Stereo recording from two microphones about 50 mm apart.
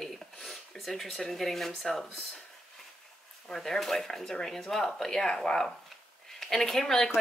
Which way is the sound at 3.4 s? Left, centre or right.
Centre.